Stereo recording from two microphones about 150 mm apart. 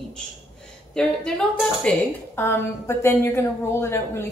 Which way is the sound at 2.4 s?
15° left (ahead or behind).